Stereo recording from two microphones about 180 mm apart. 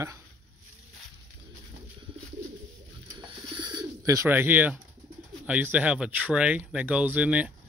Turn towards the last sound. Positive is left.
turn(degrees=-5)  # may be behind; listen again after turning